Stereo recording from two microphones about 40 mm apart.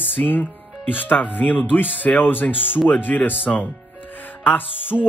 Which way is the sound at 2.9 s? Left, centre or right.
Left.